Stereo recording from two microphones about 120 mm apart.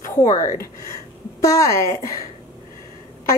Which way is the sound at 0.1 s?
30° left (ahead or behind).